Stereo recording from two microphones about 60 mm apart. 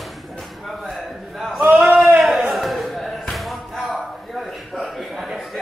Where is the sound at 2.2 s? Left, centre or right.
Centre.